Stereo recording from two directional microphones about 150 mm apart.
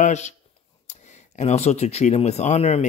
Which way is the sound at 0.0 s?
50° left (ahead or behind).